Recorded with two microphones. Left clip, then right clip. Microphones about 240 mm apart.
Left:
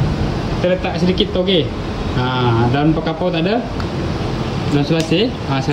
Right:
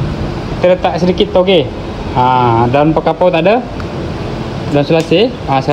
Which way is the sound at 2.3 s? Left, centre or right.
Centre.